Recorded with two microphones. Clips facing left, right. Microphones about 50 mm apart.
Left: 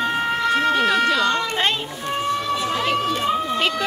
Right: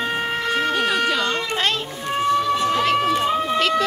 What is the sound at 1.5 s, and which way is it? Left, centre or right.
Children playing, centre.